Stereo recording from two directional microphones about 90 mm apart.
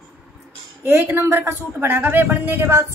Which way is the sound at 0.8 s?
25° right (ahead or behind).